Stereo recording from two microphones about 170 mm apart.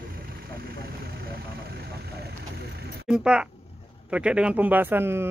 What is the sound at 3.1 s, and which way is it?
Speech, 5° right (ahead or behind).